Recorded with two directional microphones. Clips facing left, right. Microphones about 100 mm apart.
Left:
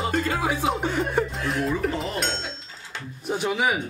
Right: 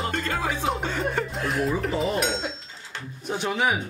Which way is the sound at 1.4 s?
Centre (ahead or behind).